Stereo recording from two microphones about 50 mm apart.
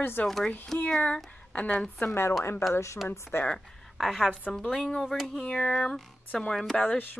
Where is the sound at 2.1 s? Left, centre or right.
Left.